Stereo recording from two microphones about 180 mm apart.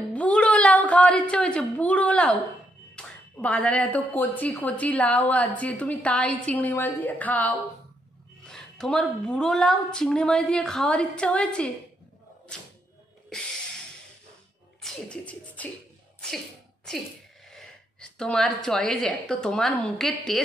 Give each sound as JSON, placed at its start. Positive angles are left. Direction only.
{"t": 0.1, "sound": "a sound", "side_deg": 5}
{"t": 3.0, "sound": "a woman's voice", "side_deg": 5}
{"t": 14.8, "sound": "beatboxing", "side_deg": 5}
{"t": 17.5, "sound": "speech", "side_deg": 5}